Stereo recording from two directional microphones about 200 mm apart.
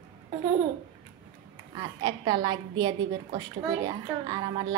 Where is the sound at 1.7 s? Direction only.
20° right (ahead or behind).